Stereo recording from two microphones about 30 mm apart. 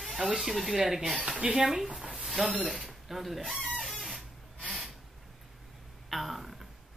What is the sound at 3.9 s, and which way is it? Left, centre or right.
Printer, centre.